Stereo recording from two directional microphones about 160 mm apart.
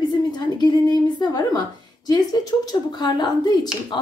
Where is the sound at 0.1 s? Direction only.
25° left (ahead or behind).